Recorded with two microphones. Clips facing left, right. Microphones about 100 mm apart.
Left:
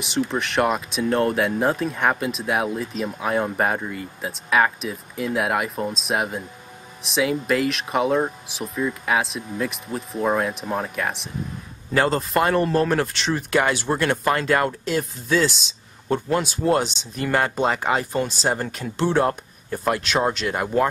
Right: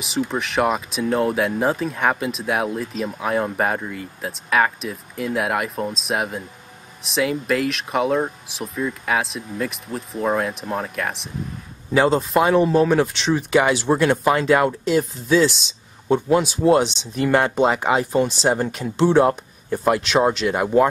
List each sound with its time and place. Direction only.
0.0 s speech: centre (ahead or behind)